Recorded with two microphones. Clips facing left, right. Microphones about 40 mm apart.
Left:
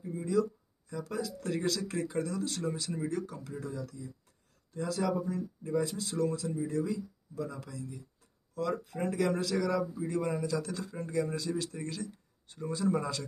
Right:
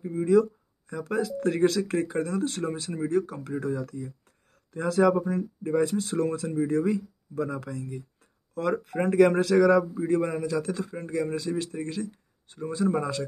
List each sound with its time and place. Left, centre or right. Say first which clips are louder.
0.2 s speech: right 9 dB; right
2.9 s speech: right 8 dB; right